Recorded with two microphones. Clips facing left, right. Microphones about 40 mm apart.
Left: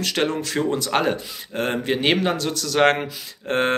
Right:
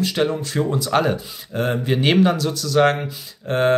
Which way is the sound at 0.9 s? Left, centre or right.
Left.